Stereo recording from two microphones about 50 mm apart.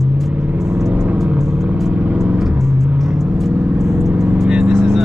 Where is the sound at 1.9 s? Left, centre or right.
Right.